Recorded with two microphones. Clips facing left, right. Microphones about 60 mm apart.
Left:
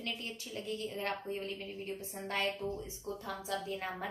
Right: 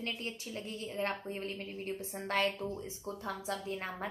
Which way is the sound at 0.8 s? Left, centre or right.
Right.